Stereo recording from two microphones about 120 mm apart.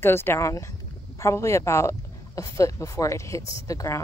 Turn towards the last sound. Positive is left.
turn(degrees=25)  # may be behind; listen again after turning